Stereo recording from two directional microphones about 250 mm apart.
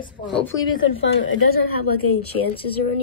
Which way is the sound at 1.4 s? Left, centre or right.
Left.